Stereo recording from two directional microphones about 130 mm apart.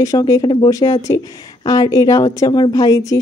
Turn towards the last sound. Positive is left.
turn(degrees=30)  # may be behind; listen again after turning